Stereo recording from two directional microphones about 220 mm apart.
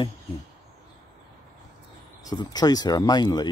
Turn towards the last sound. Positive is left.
turn(degrees=20)  # may be behind; listen again after turning